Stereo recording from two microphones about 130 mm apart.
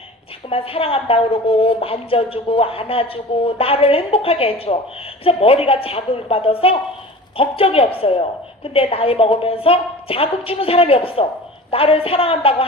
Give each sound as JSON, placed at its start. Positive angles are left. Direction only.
{"t": 0.5, "sound": "a woman's voice", "side_deg": 45}